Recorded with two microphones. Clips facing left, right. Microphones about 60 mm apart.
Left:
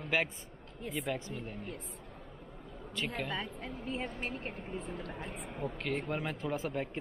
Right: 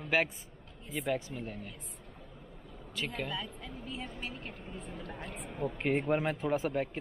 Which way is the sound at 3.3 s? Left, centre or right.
Left.